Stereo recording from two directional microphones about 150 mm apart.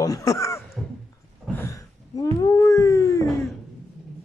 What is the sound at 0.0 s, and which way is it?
Speech, 20° left (ahead or behind).